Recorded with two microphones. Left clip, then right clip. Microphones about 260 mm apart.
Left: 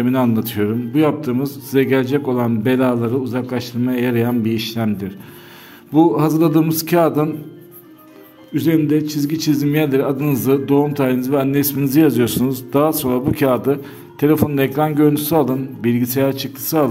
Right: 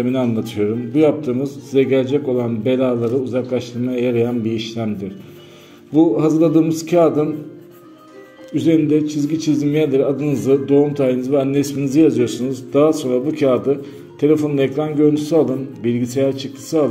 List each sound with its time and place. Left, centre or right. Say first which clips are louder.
0.0 s a man's voice: left 2 dB; left
6.1 s a man's voice: right 1 dB; left
8.5 s a man's voice: right 1 dB; left